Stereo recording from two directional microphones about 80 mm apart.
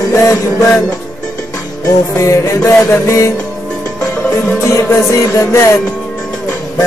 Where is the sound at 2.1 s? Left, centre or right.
Left.